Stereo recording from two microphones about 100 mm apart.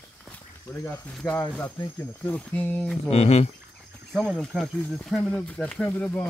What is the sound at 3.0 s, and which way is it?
Speech, 90° left.